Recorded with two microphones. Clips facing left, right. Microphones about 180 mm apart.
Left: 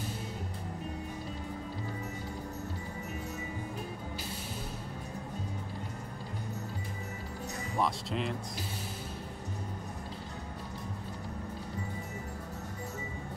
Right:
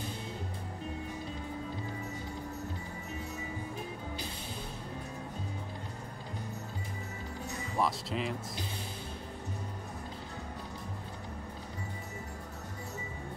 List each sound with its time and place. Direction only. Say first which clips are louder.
7.7 s speech: even; centre (ahead or behind)